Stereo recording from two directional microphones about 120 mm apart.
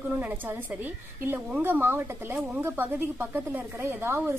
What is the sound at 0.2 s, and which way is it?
A woman's voice, 15° right (ahead or behind).